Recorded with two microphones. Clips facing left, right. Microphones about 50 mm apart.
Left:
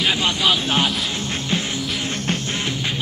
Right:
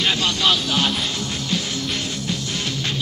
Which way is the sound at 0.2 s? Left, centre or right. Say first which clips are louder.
Left 1 dB; centre.